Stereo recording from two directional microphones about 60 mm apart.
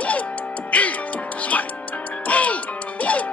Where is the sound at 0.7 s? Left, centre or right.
Left.